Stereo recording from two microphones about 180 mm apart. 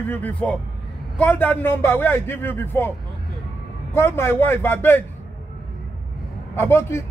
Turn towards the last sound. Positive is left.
turn(degrees=15)  # may be behind; listen again after turning